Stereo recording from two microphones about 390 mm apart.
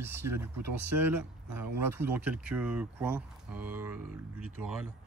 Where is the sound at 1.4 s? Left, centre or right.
Right.